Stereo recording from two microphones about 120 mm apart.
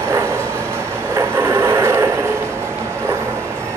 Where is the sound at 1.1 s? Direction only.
20° right (ahead or behind).